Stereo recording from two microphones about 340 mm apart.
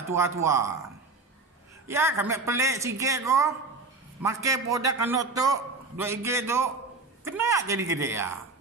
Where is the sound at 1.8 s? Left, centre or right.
Centre.